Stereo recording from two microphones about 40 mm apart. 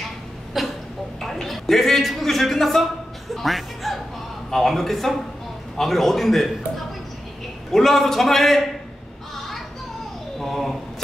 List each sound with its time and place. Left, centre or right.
0.6 s speech: centre
1.2 s a man's voice: centre
7.7 s a man's voice: centre
10.4 s a man's voice: centre